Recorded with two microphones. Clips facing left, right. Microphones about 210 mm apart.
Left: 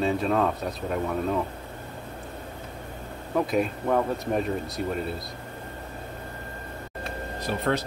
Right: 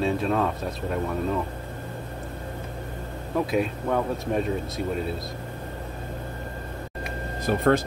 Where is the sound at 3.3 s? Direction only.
Centre (ahead or behind).